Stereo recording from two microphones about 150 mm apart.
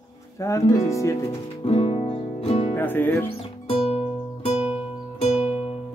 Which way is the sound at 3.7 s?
40° left (ahead or behind).